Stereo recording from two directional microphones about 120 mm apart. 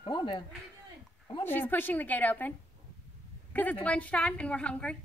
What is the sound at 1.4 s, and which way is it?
A woman's voice, 15° left (ahead or behind).